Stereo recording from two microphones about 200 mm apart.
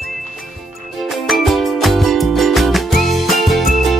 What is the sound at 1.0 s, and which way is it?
Music, centre (ahead or behind).